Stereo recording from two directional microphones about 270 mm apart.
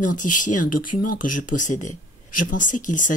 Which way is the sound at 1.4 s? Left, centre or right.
Left.